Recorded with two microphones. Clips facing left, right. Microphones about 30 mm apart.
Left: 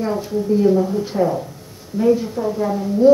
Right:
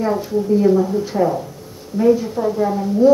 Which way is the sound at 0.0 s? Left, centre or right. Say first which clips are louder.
Right 2 dB; centre.